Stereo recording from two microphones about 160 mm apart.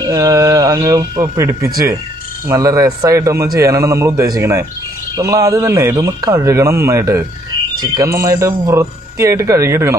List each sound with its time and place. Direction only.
0.0 s a man's voice: 20° right (ahead or behind)